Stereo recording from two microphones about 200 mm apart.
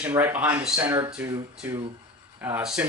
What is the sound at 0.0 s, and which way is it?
Speech, 10° right (ahead or behind).